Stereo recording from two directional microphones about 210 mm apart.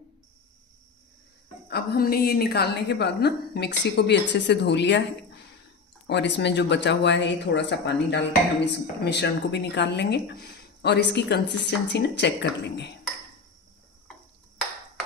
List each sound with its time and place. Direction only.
1.7 s a woman's voice: 50° left (ahead or behind)
6.0 s speech: 55° left (ahead or behind)